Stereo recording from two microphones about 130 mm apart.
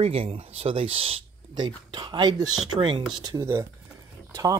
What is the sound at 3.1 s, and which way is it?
Speech, 30° right (ahead or behind).